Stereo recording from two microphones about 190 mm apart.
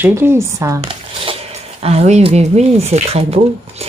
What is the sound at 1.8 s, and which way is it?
Speech, 35° right (ahead or behind).